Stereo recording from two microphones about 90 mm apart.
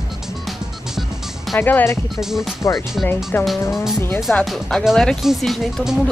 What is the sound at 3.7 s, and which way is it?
Speech, 5° right (ahead or behind).